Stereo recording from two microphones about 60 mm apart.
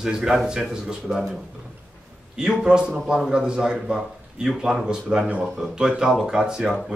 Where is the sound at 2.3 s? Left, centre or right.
Centre.